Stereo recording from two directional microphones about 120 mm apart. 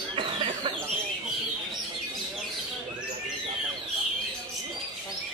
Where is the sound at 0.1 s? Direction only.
45° right (ahead or behind).